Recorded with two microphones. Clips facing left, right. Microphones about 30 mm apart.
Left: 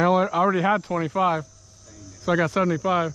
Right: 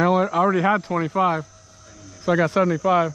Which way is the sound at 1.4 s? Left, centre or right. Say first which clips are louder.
Right 3 dB; right.